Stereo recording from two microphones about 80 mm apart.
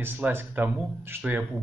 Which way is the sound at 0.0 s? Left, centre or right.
Right.